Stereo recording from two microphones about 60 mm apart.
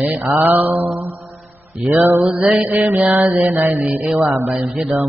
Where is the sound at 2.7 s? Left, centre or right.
Right.